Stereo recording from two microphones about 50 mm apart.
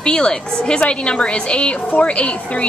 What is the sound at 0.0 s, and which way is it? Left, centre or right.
Speech, centre.